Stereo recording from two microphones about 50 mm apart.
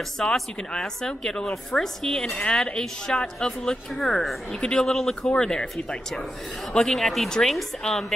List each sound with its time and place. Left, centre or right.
0.2 s a woman's voice: centre